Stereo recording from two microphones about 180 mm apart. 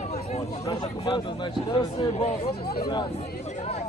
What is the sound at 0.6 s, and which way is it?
Speech, 25° left (ahead or behind).